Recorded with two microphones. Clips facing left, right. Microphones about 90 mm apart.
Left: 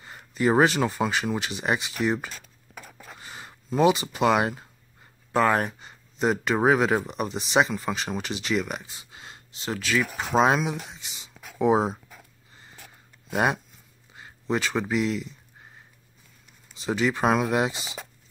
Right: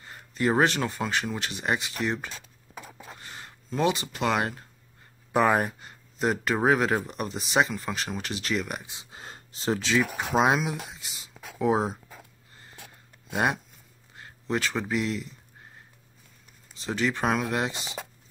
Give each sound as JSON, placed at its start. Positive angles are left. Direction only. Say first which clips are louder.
{"t": 0.0, "sound": "speech", "louder": "left 3 dB", "side_deg": 5}
{"t": 2.3, "sound": "a sound", "louder": "right 1 dB", "side_deg": -20}
{"t": 3.2, "sound": "speech", "louder": "left 2 dB", "side_deg": 5}
{"t": 5.3, "sound": "speech", "louder": "left 1 dB", "side_deg": -10}
{"t": 9.1, "sound": "a sound", "louder": "right 2 dB", "side_deg": -35}
{"t": 10.0, "sound": "speech", "louder": "left 5 dB", "side_deg": -10}
{"t": 13.3, "sound": "speech", "louder": "left 2 dB", "side_deg": 0}
{"t": 16.7, "sound": "speech", "louder": "left 3 dB", "side_deg": 5}